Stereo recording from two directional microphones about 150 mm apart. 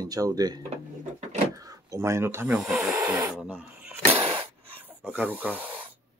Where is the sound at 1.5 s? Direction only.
25° right (ahead or behind).